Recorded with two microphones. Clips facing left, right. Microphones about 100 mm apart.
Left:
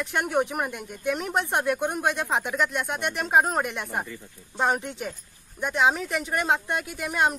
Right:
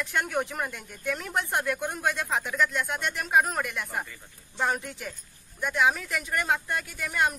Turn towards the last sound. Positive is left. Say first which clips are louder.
# left 3 dB
turn(degrees=20)  # may be behind; listen again after turning